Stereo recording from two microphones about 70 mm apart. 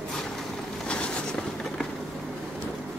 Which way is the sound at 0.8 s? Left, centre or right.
Centre.